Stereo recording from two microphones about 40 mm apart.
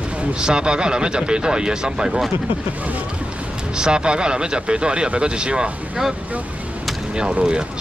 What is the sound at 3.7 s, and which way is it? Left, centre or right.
Speech, right.